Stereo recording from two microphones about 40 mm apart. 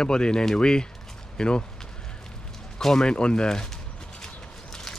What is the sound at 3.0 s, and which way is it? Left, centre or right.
Speech, left.